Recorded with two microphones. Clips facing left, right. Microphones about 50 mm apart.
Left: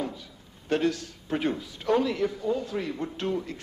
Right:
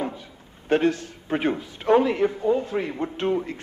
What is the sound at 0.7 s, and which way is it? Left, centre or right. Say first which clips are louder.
A man's voice: right 5 dB; right.